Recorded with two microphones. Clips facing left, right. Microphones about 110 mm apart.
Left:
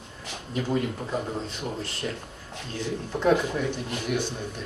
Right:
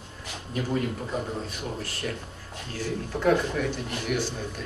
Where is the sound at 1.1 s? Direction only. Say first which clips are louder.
Left 1 dB; 25° left (ahead or behind).